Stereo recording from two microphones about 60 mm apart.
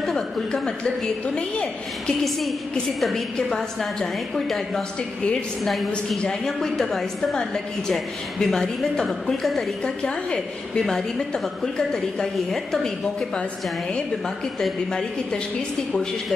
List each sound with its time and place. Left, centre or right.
0.0 s a woman's voice: centre
3.0 s a woman's voice: centre
9.8 s a woman's voice: centre
14.6 s a woman's voice: centre